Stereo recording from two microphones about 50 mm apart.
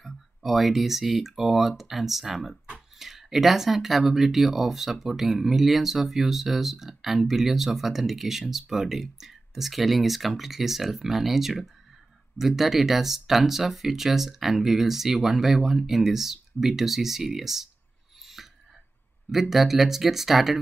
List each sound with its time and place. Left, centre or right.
0.0 s speech: centre
18.2 s a sound: centre
19.5 s speech: centre